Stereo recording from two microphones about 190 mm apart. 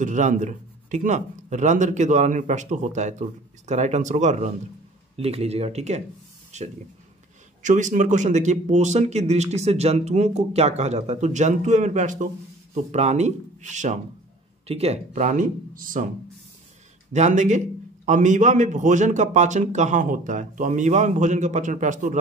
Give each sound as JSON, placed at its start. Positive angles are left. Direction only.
{"t": 0.0, "sound": "speech", "side_deg": -40}
{"t": 17.1, "sound": "speech", "side_deg": -40}